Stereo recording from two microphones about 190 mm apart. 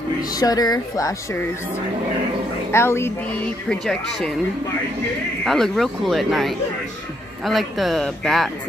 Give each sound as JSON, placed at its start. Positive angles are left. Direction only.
{"t": 0.4, "sound": "speech", "side_deg": 20}
{"t": 2.7, "sound": "a woman's voice", "side_deg": 15}
{"t": 3.6, "sound": "speech", "side_deg": 5}
{"t": 5.4, "sound": "speech", "side_deg": 0}